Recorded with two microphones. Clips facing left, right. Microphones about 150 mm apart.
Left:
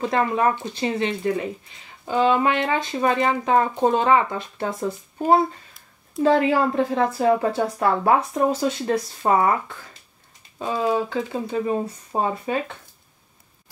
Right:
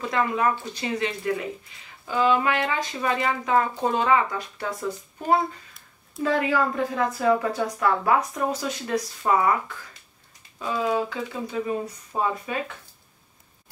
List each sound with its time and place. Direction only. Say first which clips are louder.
0.0 s speech: left 3 dB; 30° left (ahead or behind)